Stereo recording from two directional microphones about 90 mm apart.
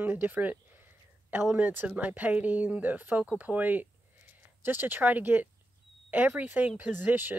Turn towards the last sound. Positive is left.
turn(degrees=-25)  # may be behind; listen again after turning